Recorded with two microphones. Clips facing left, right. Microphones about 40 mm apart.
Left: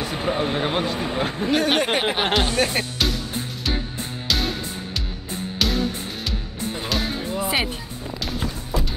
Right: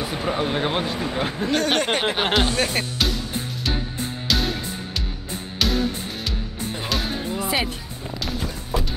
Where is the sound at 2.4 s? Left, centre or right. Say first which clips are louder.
Left 1 dB; centre.